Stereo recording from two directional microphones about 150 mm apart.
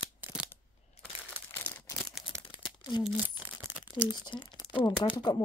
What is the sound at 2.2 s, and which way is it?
Crumpling, 30° left (ahead or behind).